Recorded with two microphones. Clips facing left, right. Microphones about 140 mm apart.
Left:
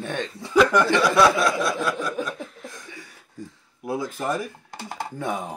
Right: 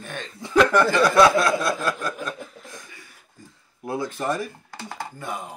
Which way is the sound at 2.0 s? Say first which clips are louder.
Left 2 dB; centre (ahead or behind).